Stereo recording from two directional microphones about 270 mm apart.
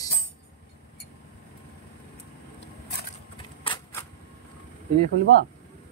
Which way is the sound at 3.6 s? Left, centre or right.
Centre.